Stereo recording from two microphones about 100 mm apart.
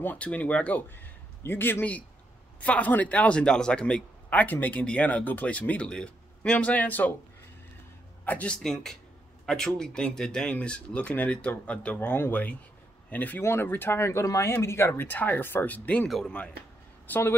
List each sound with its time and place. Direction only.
0.0 s a man's voice: 15° left (ahead or behind)
8.3 s speech: 10° left (ahead or behind)
17.1 s speech: 25° left (ahead or behind)